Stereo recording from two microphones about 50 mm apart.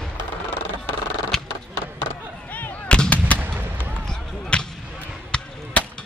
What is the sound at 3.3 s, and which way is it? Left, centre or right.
Fireworks, right.